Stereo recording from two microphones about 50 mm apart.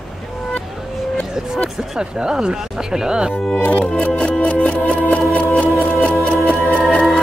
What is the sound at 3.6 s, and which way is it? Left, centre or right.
Music, left.